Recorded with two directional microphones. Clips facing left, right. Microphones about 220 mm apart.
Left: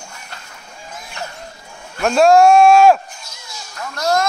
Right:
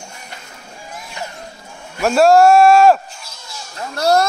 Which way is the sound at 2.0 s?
5° right (ahead or behind).